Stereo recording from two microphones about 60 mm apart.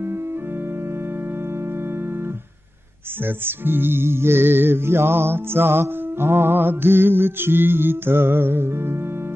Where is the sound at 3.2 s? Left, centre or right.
Right.